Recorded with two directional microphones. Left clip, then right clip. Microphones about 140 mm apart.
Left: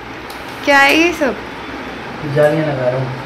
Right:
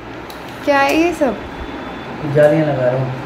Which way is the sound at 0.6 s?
15° right (ahead or behind).